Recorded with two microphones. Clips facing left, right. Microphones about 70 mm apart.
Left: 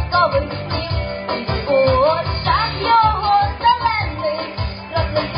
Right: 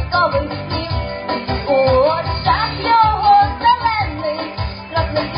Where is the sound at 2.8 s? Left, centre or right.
Right.